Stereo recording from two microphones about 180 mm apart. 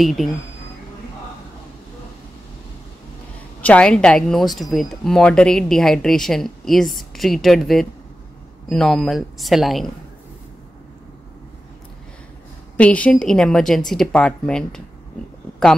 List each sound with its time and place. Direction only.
0.0 s speech: centre (ahead or behind)
3.6 s speech: 5° left (ahead or behind)
12.7 s speech: 5° left (ahead or behind)